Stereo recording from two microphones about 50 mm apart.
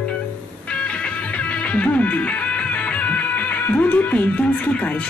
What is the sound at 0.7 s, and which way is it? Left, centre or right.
Music, left.